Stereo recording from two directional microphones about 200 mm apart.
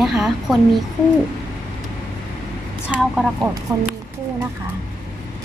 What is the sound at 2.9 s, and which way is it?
Speech, 5° right (ahead or behind).